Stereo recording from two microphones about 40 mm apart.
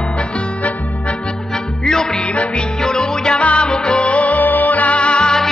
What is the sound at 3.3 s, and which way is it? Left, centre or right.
Music, left.